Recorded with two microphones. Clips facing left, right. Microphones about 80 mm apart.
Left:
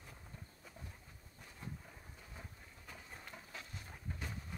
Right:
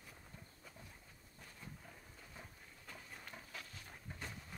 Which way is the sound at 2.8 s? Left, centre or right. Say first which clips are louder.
Left 1 dB; left.